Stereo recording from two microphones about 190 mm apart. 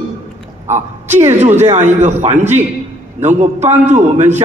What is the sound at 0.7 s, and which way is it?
A man's voice, 35° right (ahead or behind).